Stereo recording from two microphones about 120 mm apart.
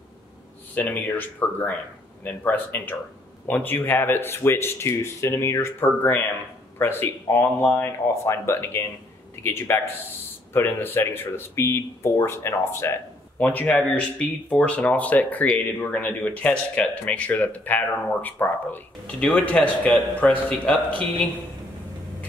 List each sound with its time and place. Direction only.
0.7 s speech: 15° left (ahead or behind)